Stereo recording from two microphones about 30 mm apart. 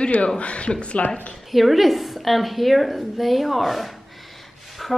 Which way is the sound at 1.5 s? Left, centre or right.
Centre.